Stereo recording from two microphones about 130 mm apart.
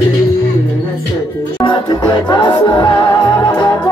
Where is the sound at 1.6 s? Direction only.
35° left (ahead or behind).